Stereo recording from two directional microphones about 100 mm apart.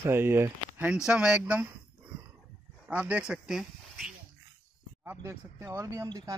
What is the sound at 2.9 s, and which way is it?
Speech, 15° right (ahead or behind).